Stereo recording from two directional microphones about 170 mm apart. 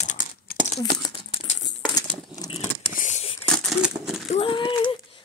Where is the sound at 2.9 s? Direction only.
45° left (ahead or behind).